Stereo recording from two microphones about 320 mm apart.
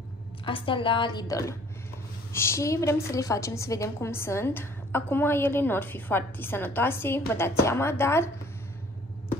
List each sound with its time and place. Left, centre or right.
0.5 s a woman's voice: centre